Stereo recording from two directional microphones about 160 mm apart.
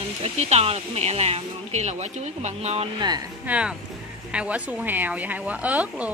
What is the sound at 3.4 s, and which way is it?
Speech, 5° right (ahead or behind).